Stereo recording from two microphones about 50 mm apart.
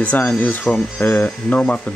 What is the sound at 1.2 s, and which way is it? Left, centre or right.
Speech, left.